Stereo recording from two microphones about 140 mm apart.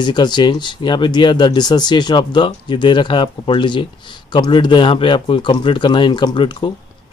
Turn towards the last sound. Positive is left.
turn(degrees=35)  # may be behind; listen again after turning